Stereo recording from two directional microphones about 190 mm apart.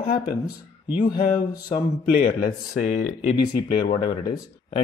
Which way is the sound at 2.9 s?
40° left (ahead or behind).